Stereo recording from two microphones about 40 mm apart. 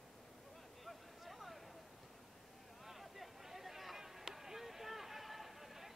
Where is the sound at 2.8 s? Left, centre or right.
Centre.